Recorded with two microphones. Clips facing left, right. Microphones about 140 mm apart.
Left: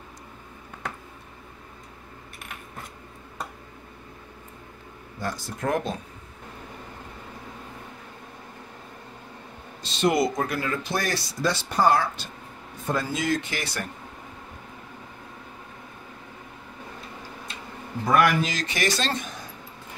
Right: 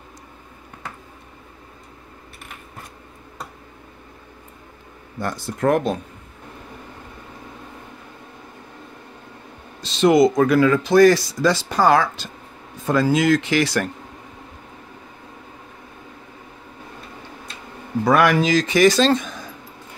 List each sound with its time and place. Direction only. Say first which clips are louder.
5.2 s speech: right 8 dB; 60° right (ahead or behind)
9.8 s speech: right 8 dB; 90° right
18.0 s speech: right 5 dB; 90° right